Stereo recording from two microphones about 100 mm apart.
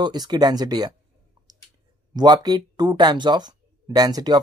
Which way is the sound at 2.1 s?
45° right (ahead or behind).